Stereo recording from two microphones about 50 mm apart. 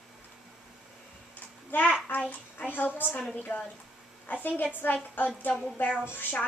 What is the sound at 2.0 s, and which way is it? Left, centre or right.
A child's voice, left.